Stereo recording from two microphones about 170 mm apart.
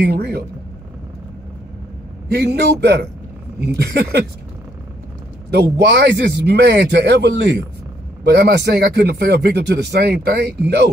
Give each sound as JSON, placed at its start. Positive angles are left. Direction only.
{"t": 0.0, "sound": "speech", "side_deg": -70}
{"t": 2.3, "sound": "a man's voice", "side_deg": -75}
{"t": 5.5, "sound": "speech", "side_deg": -80}